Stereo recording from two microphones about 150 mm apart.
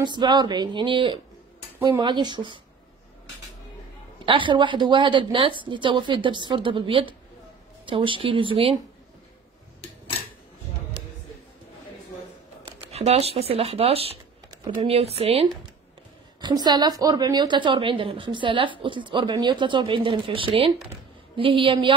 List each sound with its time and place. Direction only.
0.0 s a woman's voice: 30° right (ahead or behind)
4.3 s a woman's voice: 35° right (ahead or behind)
12.9 s a woman's voice: 45° right (ahead or behind)
16.3 s a woman's voice: 30° right (ahead or behind)